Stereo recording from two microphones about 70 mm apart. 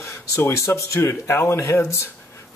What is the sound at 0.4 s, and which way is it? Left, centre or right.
Speech, left.